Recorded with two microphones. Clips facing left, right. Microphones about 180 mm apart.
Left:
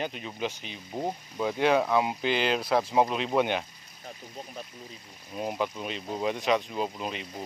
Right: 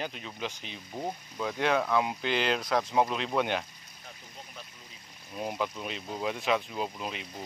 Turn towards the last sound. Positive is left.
turn(degrees=0)  # may be behind; listen again after turning